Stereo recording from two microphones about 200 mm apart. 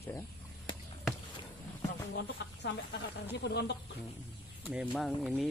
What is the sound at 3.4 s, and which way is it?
Speech, 55° left (ahead or behind).